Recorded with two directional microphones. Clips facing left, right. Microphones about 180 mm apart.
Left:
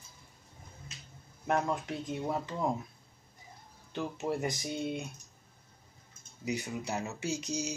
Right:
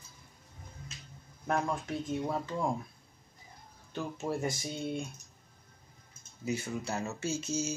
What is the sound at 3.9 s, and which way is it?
Speech, 20° left (ahead or behind).